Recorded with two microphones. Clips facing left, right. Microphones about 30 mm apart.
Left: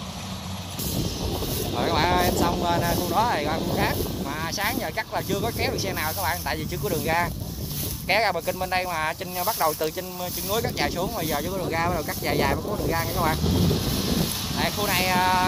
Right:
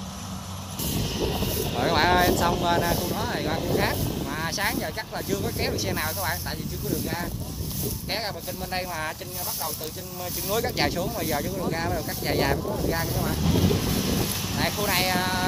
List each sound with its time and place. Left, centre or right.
1.2 s speech: centre
3.2 s speech: centre
3.4 s speech: centre
6.9 s speech: left
8.1 s speech: centre
9.4 s speech: left
10.5 s speech: centre
13.4 s vehicle: centre